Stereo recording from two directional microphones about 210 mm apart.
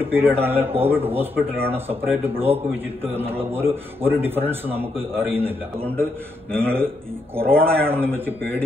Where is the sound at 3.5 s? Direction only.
10° right (ahead or behind).